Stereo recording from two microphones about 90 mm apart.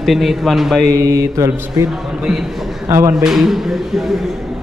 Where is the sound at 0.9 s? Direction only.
40° right (ahead or behind).